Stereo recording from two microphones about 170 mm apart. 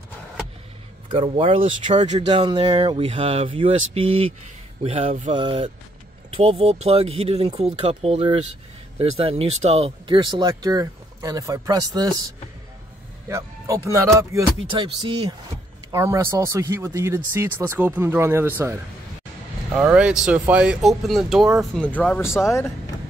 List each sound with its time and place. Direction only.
1.1 s speech: 35° right (ahead or behind)
13.3 s speech: 20° right (ahead or behind)
14.7 s speech: 30° right (ahead or behind)
15.9 s speech: 15° right (ahead or behind); by 22.4 s 15° left (ahead or behind)